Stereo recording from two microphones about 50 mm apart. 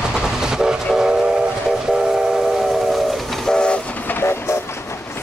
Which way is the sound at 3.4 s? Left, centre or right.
Centre.